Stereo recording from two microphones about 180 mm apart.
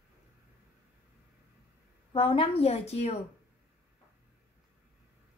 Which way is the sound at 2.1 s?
30° left (ahead or behind).